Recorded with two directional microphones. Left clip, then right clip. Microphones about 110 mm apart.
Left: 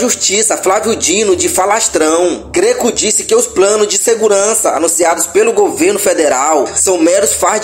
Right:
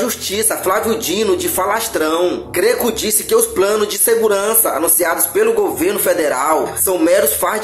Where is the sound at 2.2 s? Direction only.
20° left (ahead or behind).